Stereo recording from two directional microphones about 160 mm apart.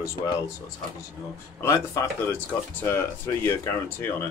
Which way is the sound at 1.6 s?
20° left (ahead or behind).